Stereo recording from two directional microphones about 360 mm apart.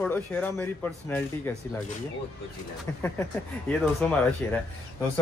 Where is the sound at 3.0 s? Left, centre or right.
Centre.